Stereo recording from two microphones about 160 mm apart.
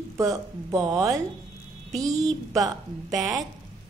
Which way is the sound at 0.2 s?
20° right (ahead or behind).